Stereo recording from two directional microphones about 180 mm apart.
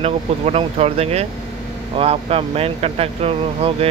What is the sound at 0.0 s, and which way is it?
Speech, 35° right (ahead or behind).